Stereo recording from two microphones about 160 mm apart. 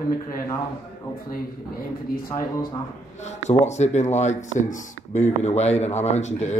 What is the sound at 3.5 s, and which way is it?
Speech, 45° left (ahead or behind).